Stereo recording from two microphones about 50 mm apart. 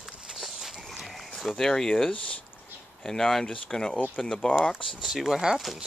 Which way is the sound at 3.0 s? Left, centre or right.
Centre.